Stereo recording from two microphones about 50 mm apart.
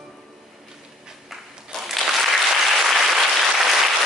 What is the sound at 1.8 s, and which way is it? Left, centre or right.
Applause, centre.